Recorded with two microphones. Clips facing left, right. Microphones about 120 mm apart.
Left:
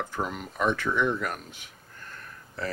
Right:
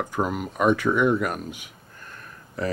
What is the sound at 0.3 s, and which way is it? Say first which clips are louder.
Speech: right 7 dB; 5° right (ahead or behind).